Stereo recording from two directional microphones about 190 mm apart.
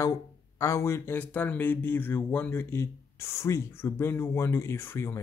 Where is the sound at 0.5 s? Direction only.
15° left (ahead or behind).